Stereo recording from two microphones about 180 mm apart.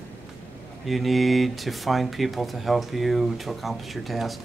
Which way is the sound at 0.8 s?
Centre (ahead or behind).